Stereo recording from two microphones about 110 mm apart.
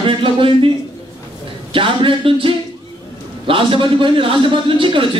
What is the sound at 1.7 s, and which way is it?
A man's voice, 50° right (ahead or behind).